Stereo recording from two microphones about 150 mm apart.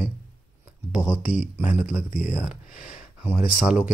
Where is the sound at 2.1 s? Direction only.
55° left (ahead or behind).